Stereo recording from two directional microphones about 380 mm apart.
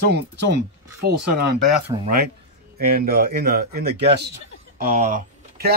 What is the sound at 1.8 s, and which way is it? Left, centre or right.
Speech, centre.